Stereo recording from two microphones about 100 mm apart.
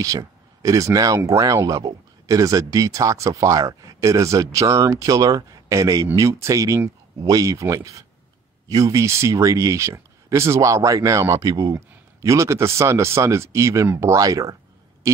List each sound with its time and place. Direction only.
0.0 s speech: 35° right (ahead or behind)